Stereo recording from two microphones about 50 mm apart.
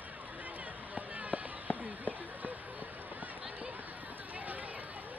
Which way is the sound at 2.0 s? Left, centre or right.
Right.